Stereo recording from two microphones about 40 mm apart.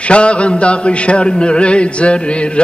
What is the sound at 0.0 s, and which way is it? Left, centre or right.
Music, left.